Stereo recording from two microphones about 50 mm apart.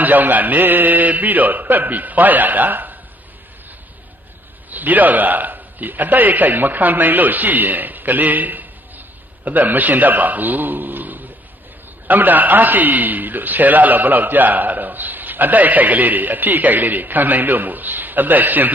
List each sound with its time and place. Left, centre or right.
0.0 s a man's voice: right
4.6 s a man's voice: right